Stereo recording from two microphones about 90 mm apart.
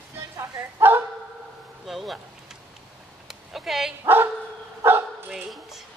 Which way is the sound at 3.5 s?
5° right (ahead or behind).